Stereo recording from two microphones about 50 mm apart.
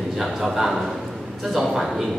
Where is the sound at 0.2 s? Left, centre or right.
Centre.